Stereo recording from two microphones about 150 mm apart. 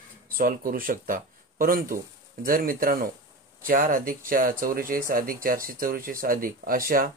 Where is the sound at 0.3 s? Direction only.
70° right (ahead or behind).